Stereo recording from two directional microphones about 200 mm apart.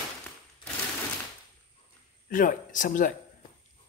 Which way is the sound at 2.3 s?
40° left (ahead or behind).